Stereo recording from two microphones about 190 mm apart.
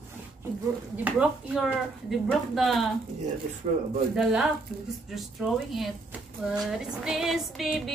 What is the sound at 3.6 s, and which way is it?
Speech, 35° right (ahead or behind).